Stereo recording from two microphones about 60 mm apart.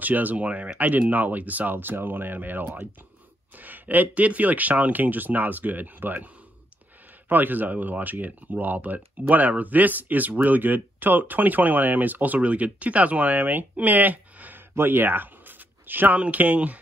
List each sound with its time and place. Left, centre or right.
0.0 s speech: right
7.2 s speech: right
14.8 s a sound: right
16.2 s speech: right